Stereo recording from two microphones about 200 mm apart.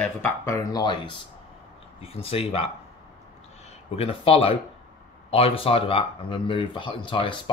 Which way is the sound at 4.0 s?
30° left (ahead or behind).